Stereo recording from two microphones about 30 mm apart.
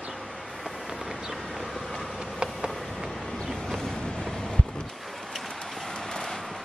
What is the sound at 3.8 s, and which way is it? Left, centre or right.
Vehicle, left.